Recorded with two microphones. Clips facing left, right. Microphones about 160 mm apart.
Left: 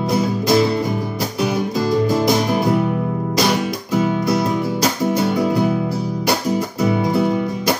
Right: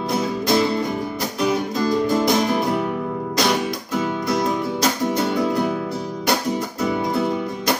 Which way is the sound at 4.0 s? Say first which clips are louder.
Left 4 dB; 5° left (ahead or behind).